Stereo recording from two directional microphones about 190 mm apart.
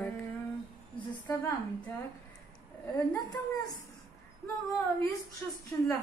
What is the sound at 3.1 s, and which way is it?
Speech, 20° left (ahead or behind).